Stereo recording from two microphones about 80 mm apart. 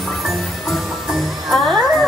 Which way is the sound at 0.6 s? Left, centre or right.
Centre.